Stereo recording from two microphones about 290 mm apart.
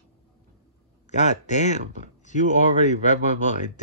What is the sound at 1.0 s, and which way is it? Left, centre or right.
Speech, left.